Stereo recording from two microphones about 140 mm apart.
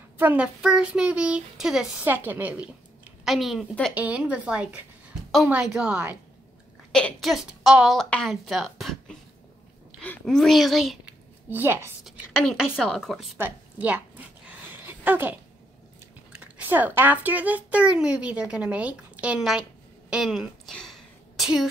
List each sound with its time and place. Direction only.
0.2 s a woman's voice: 10° right (ahead or behind)
6.9 s a woman's voice: 5° left (ahead or behind)
11.5 s speech: 15° right (ahead or behind)
12.0 s speech: 5° right (ahead or behind)
13.4 s a sound: 10° right (ahead or behind)
16.3 s a child's voice: 10° right (ahead or behind)
20.1 s a sound: 5° right (ahead or behind)